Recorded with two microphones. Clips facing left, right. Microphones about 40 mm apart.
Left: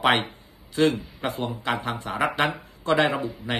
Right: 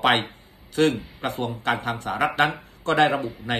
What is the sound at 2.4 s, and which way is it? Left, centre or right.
Speech, right.